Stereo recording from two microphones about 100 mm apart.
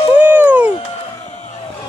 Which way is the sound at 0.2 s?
15° right (ahead or behind).